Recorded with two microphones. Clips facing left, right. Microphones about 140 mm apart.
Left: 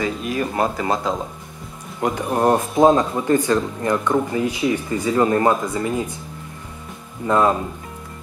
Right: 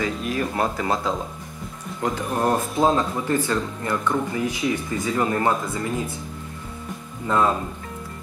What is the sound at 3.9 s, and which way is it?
Speech, 20° left (ahead or behind).